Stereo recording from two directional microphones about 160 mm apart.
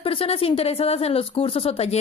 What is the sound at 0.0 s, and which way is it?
Speech, 35° left (ahead or behind).